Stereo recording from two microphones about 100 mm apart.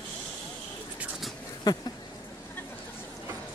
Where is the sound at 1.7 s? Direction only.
40° left (ahead or behind).